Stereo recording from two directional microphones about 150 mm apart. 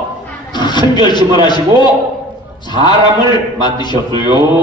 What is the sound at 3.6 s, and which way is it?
Speech, 30° left (ahead or behind).